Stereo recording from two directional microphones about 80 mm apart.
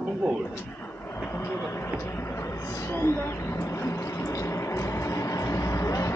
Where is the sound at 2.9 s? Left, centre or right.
Left.